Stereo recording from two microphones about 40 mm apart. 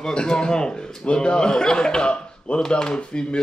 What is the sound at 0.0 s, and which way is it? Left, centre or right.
A man's voice, centre.